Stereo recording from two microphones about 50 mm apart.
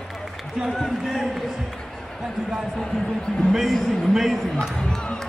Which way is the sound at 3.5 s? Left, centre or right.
Centre.